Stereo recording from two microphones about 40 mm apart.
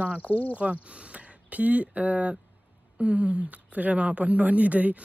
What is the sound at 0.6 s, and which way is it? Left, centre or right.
Speech, right.